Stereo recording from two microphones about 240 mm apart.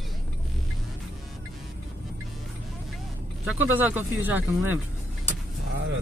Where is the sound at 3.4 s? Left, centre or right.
Centre.